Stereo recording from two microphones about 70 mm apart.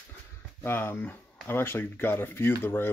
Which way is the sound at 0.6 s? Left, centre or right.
Left.